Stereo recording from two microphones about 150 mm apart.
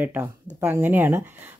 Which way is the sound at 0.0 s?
10° right (ahead or behind).